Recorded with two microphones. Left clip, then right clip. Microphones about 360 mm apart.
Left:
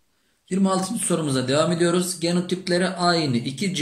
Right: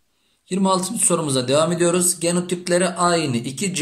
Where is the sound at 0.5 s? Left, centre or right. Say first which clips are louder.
Right 3 dB; centre.